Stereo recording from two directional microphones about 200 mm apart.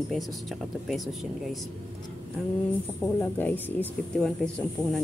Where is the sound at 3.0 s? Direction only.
10° left (ahead or behind).